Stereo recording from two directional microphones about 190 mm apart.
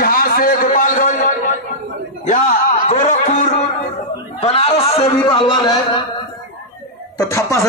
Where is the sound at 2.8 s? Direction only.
40° left (ahead or behind).